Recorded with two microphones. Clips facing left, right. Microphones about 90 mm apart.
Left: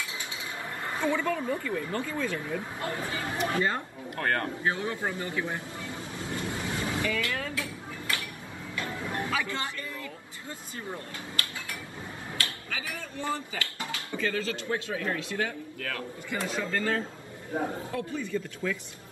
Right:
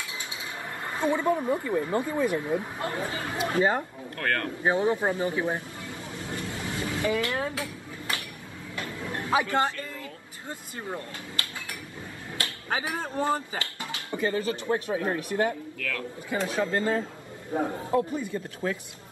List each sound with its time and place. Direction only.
0.8 s speech: 20° right (ahead or behind)
4.2 s speech: 25° left (ahead or behind)
4.6 s speech: 20° right (ahead or behind)
5.9 s vehicle: 25° left (ahead or behind)
7.0 s a sound: 25° right (ahead or behind)
8.8 s a sound: 25° left (ahead or behind)
9.3 s speech: 20° right (ahead or behind)
15.8 s speech: 25° left (ahead or behind)
16.3 s speech: 25° right (ahead or behind)